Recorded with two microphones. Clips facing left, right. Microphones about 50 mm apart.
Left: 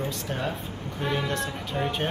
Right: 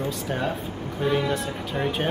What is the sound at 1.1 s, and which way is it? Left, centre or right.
Speech, centre.